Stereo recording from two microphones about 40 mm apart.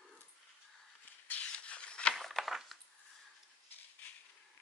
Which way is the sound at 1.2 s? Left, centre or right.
Left.